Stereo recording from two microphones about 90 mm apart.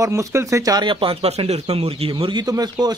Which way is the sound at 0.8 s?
70° right (ahead or behind).